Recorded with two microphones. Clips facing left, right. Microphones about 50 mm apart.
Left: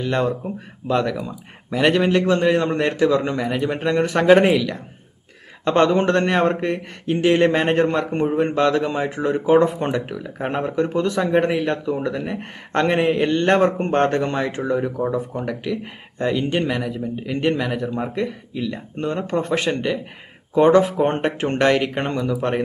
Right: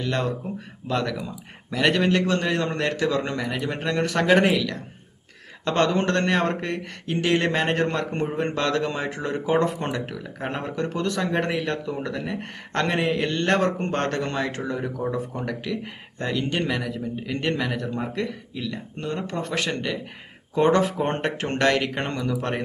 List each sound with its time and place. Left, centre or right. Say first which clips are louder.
0.0 s a man's voice: left 5 dB; left